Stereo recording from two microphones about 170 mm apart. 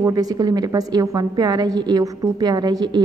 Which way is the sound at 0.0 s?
20° right (ahead or behind).